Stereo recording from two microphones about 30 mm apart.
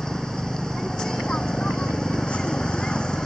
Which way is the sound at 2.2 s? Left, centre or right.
Left.